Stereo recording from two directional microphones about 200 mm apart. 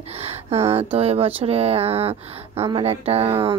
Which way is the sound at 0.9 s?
30° right (ahead or behind).